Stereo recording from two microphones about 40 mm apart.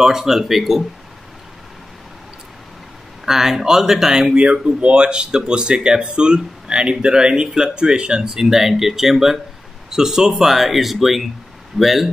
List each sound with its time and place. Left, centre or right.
0.0 s speech: centre
3.3 s speech: centre
4.4 s speech: right; by 12.1 s centre